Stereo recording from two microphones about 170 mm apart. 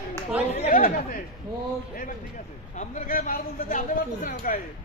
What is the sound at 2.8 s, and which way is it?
Speech, 55° left (ahead or behind).